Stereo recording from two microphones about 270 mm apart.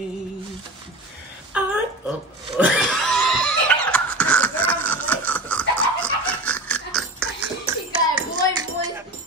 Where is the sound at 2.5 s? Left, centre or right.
Centre.